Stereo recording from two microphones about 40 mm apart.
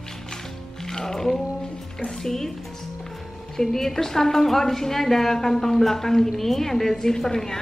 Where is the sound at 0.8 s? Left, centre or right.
Centre.